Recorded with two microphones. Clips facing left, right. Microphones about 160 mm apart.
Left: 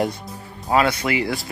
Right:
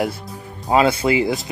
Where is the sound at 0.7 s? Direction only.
25° right (ahead or behind).